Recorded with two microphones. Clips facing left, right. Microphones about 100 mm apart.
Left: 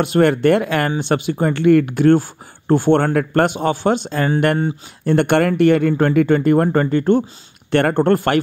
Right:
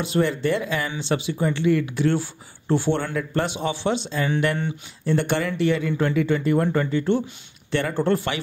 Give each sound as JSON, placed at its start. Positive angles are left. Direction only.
{"t": 0.0, "sound": "speech", "side_deg": 60}